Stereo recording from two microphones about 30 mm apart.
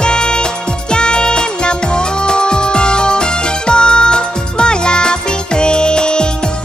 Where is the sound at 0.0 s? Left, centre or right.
Left.